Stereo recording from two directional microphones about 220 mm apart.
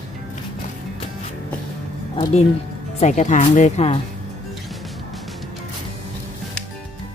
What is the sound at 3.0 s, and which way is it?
Speech, 30° left (ahead or behind).